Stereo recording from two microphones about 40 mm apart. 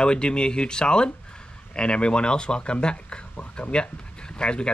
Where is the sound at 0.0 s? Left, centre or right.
Left.